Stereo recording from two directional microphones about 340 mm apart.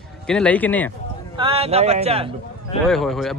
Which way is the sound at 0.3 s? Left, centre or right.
Centre.